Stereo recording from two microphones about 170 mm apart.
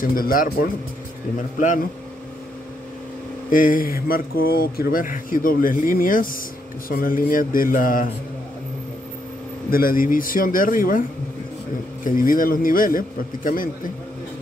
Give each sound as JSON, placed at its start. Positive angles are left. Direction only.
{"t": 0.0, "sound": "speech", "side_deg": 55}
{"t": 3.4, "sound": "speech", "side_deg": 55}
{"t": 9.7, "sound": "speech", "side_deg": 60}